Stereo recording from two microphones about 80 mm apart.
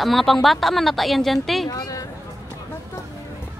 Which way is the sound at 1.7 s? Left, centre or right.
Left.